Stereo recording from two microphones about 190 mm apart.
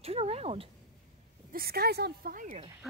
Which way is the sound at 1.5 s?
50° right (ahead or behind).